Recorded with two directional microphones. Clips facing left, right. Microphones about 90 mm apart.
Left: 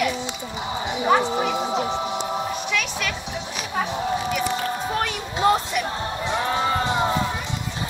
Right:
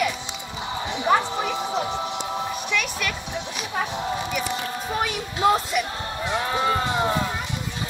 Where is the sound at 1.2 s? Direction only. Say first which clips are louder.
Left 3 dB; 15° left (ahead or behind).